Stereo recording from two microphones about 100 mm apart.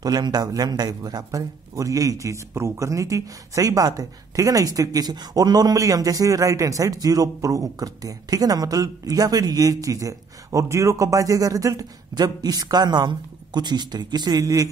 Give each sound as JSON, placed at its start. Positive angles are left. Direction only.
{"t": 0.0, "sound": "a man's voice", "side_deg": -40}